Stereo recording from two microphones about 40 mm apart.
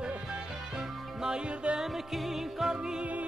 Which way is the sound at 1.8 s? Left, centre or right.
Centre.